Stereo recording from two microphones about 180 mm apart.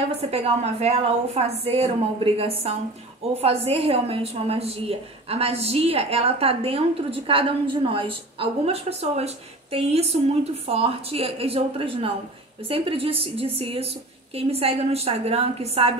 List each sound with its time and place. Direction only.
0.2 s a woman's voice: 35° right (ahead or behind)